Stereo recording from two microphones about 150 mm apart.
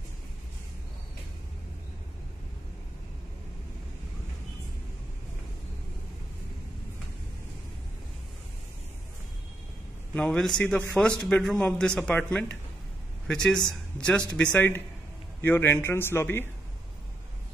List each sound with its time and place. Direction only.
10.1 s a man's voice: 5° left (ahead or behind)